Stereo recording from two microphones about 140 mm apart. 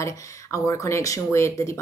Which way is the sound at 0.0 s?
25° left (ahead or behind).